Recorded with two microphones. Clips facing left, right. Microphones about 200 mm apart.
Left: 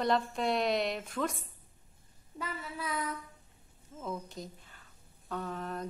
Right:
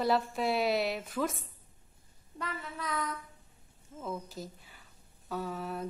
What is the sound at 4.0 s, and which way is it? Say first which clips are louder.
Speech: right 1 dB; 5° right (ahead or behind).